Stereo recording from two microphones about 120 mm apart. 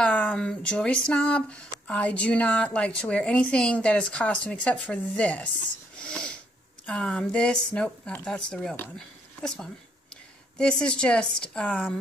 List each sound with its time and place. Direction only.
0.0 s speech: 10° left (ahead or behind)
5.9 s wheeze: 5° left (ahead or behind)
6.9 s speech: 5° left (ahead or behind)